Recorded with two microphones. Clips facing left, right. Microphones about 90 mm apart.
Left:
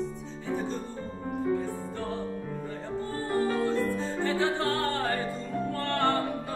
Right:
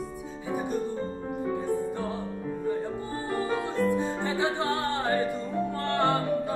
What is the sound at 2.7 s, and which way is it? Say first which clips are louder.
Music: right 2 dB; 15° right (ahead or behind).